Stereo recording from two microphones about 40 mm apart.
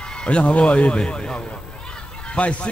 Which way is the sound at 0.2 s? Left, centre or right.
Left.